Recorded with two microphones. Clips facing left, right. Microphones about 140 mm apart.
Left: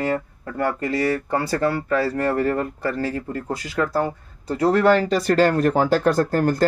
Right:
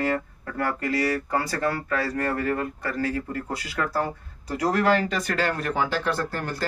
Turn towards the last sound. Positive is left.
turn(degrees=45)  # may be behind; listen again after turning